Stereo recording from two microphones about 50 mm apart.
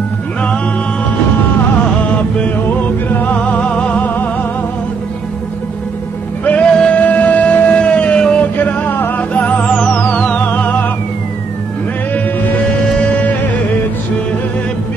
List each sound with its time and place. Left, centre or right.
2.1 s music: left
3.3 s music: left
4.0 s music: left
6.4 s music: left
8.5 s music: left